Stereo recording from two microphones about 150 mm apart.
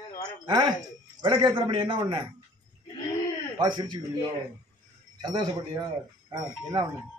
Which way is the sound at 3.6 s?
30° right (ahead or behind).